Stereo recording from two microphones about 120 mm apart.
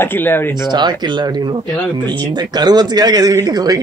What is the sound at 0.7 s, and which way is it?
Speech, 35° right (ahead or behind).